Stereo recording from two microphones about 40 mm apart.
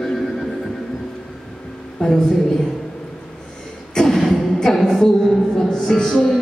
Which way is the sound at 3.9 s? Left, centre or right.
Centre.